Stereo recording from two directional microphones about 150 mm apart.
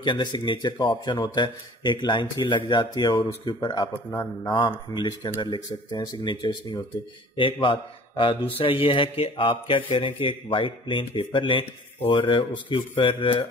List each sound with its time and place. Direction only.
0.0 s a man's voice: 30° left (ahead or behind)